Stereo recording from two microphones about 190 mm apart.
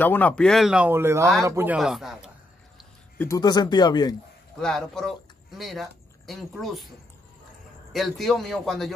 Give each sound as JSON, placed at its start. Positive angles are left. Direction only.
{"t": 0.0, "sound": "speech", "side_deg": 10}
{"t": 3.2, "sound": "speech", "side_deg": 20}
{"t": 4.6, "sound": "speech", "side_deg": 0}
{"t": 7.9, "sound": "speech", "side_deg": 0}